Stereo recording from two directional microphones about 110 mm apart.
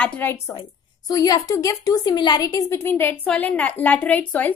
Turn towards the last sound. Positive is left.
turn(degrees=15)  # may be behind; listen again after turning